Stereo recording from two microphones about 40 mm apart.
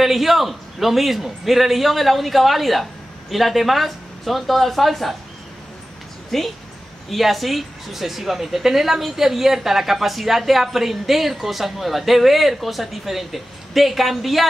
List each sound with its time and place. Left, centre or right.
0.0 s a woman's voice: centre
6.3 s a woman's voice: centre